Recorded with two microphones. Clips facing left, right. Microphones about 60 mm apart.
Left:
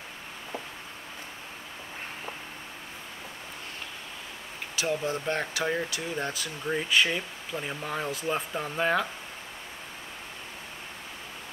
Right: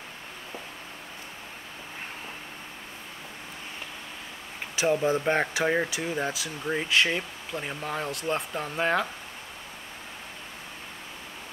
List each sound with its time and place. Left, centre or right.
4.7 s speech: right; by 9.0 s centre